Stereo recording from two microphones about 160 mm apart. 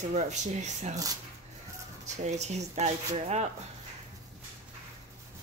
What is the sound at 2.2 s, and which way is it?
Speech, 45° right (ahead or behind).